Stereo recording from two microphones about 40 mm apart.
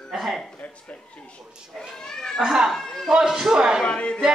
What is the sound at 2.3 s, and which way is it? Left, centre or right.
Speech, centre.